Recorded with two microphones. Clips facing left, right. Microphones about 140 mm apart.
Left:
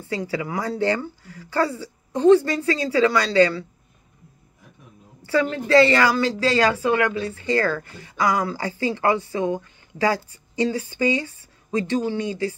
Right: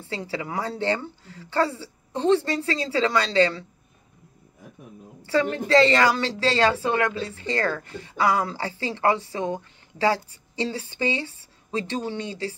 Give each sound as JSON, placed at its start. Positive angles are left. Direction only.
{"t": 0.1, "sound": "speech", "side_deg": -30}
{"t": 5.2, "sound": "speech", "side_deg": -30}